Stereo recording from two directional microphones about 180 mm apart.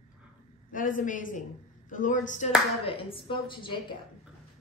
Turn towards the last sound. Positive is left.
turn(degrees=25)  # may be behind; listen again after turning